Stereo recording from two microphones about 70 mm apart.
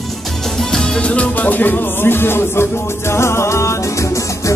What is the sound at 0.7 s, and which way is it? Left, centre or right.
Music, centre.